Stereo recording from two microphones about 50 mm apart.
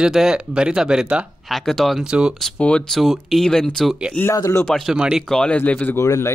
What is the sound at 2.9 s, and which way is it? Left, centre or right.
Speech, centre.